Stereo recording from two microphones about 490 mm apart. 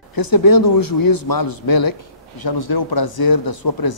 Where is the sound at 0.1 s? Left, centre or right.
Left.